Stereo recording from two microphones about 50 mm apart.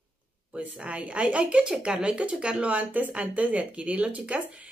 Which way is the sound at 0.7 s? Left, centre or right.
Right.